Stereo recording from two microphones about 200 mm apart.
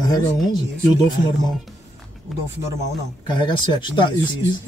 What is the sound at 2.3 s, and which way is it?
Speech, centre (ahead or behind).